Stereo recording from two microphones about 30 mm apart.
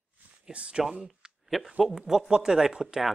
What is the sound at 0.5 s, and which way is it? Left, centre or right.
Speech, right.